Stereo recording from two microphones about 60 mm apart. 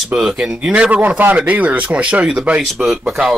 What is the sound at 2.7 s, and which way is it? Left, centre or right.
Speech, centre.